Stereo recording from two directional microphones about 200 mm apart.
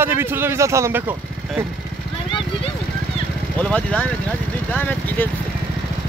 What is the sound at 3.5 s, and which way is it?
Speech, 5° left (ahead or behind).